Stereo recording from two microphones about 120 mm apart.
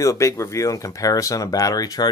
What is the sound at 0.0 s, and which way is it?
Speech, 25° left (ahead or behind).